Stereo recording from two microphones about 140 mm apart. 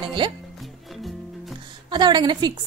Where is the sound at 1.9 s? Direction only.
30° right (ahead or behind).